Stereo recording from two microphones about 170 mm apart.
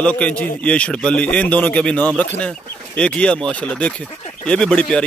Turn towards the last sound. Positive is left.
turn(degrees=5)  # may be behind; listen again after turning